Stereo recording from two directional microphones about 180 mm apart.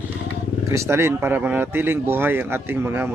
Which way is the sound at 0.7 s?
15° right (ahead or behind).